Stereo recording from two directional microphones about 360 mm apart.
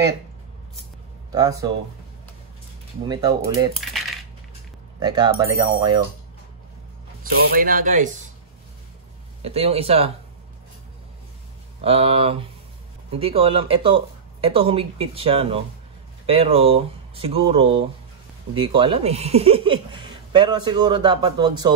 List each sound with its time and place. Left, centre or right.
1.3 s speech: centre
3.1 s speech: centre
3.7 s coin: centre
5.0 s speech: centre
7.5 s speech: right
9.4 s speech: centre
11.8 s speech: centre